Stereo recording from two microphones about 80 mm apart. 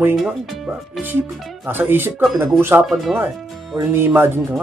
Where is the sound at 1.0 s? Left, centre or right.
Right.